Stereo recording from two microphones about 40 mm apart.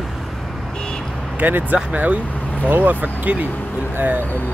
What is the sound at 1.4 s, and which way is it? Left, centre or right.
Speech, right.